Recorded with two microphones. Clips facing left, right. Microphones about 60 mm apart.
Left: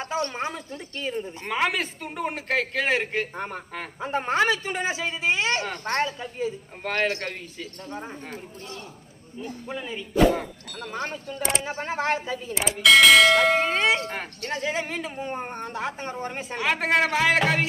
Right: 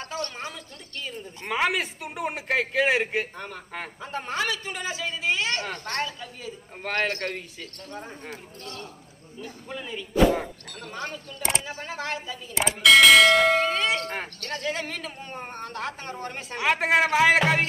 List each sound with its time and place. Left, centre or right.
0.0 s a man's voice: left
1.4 s a man's voice: centre
3.3 s a man's voice: left
7.0 s speech: centre
9.7 s speech: centre
10.1 s clang: centre
10.8 s speech: left
12.5 s clang: centre
13.6 s a man's voice: left; by 16.5 s centre
16.5 s a man's voice: centre